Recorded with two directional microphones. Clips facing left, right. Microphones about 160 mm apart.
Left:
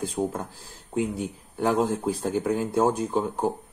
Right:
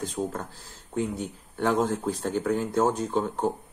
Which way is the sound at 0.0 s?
10° left (ahead or behind).